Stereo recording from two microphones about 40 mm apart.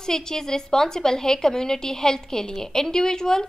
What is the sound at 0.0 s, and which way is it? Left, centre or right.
A woman's voice, centre.